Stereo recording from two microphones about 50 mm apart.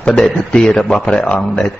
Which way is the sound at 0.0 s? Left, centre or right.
Centre.